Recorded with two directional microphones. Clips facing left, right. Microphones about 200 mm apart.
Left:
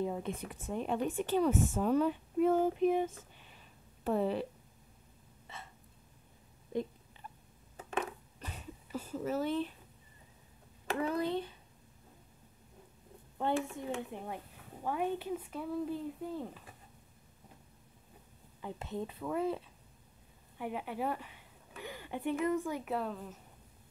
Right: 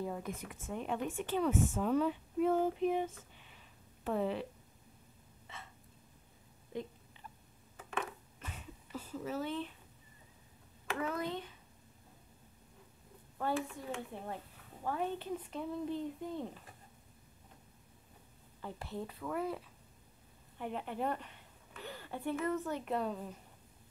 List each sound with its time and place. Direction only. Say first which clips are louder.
0.0 s speech: left 4 dB; 25° left (ahead or behind); by 3.0 s 45° left (ahead or behind)
4.0 s speech: left 3 dB; 35° left (ahead or behind)
7.7 s a sound: left 3 dB; 35° left (ahead or behind)
10.9 s speech: left 4 dB; 30° left (ahead or behind)
13.4 s a child's voice: left 3 dB; 25° left (ahead or behind); by 16.7 s 5° left (ahead or behind)
18.6 s a child's voice: left 3 dB; 15° left (ahead or behind)
20.5 s speech: left 1 dB; 10° left (ahead or behind)